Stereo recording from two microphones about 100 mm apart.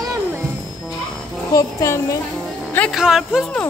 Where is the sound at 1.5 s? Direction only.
35° left (ahead or behind).